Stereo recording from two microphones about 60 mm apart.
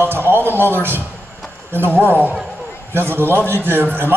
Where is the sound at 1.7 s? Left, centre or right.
Right.